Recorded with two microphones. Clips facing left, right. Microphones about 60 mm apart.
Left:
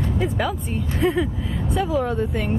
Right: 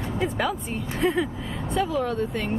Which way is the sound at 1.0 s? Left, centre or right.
Centre.